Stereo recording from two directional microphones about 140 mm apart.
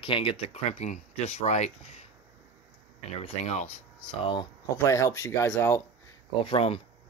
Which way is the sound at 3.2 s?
50° left (ahead or behind).